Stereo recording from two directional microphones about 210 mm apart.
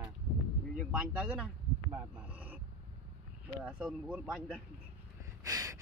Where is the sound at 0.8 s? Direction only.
5° right (ahead or behind).